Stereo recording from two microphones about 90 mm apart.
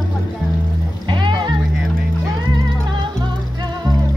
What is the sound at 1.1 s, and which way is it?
Music, 60° right (ahead or behind).